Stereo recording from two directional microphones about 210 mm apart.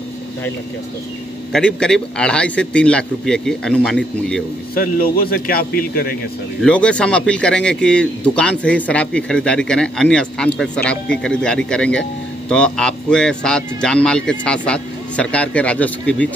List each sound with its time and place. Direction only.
1.5 s speech: 5° left (ahead or behind)
4.7 s a man's voice: 45° left (ahead or behind)
6.6 s speech: 5° left (ahead or behind)